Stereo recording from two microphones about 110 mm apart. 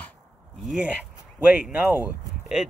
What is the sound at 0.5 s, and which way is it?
Speech, centre (ahead or behind).